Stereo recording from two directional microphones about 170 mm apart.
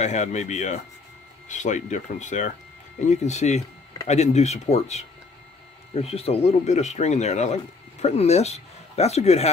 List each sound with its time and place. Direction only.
0.0 s speech: 45° left (ahead or behind)